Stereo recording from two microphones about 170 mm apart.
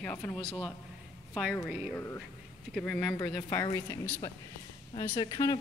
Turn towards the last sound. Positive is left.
turn(degrees=20)  # may be behind; listen again after turning